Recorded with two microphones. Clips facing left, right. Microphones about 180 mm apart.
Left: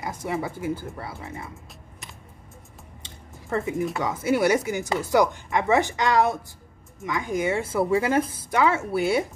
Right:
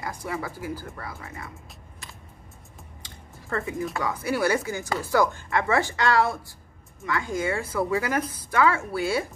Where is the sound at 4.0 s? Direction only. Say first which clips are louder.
Left 3 dB; 20° left (ahead or behind).